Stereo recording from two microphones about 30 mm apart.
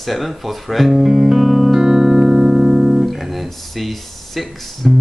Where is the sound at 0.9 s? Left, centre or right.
Centre.